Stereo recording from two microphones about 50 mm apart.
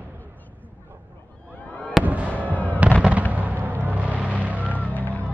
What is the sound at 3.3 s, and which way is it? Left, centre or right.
Fireworks, right.